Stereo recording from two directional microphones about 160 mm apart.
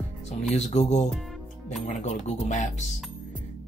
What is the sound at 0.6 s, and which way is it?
Speech, 45° left (ahead or behind).